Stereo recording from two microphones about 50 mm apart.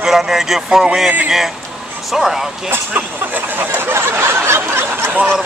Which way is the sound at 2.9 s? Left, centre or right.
Right.